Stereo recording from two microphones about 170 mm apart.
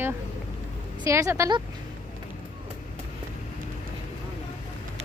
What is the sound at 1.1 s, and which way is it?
Speech, 15° right (ahead or behind).